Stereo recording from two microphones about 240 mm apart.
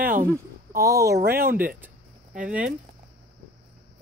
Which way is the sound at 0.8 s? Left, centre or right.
Centre.